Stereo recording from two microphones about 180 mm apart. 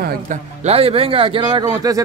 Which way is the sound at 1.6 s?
20° right (ahead or behind).